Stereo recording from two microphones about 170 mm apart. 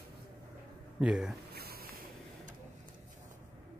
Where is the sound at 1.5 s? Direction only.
65° right (ahead or behind).